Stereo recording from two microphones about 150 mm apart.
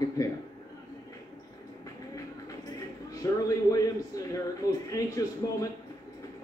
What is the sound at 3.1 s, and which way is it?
A man's voice, 25° left (ahead or behind).